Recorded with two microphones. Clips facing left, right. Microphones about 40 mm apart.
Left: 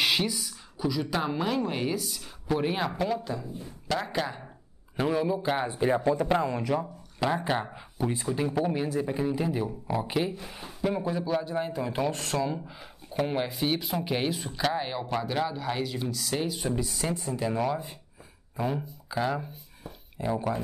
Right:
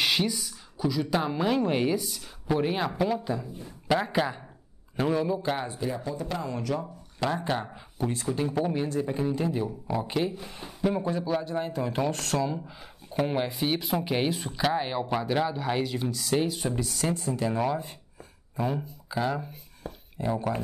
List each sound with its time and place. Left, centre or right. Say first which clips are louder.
0.0 s speech: even; centre
4.9 s speech: even; centre
5.7 s speech: left 7 dB; left
7.2 s speech: left 1 dB; centre
17.4 s speech: left 1 dB; centre